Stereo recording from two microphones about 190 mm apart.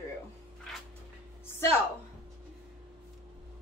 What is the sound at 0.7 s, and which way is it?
Dog, centre (ahead or behind).